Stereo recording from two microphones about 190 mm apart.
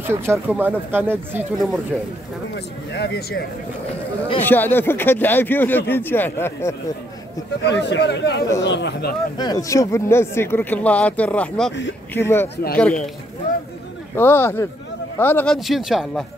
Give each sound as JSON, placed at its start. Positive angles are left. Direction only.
{"t": 0.0, "sound": "speech", "side_deg": -15}
{"t": 2.5, "sound": "speech", "side_deg": 65}
{"t": 4.4, "sound": "speech", "side_deg": 10}
{"t": 7.8, "sound": "speech", "side_deg": 65}
{"t": 9.4, "sound": "speech", "side_deg": 20}
{"t": 14.1, "sound": "speech", "side_deg": 10}